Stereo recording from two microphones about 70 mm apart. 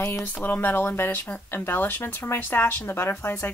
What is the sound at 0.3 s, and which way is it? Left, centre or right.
Speech, left.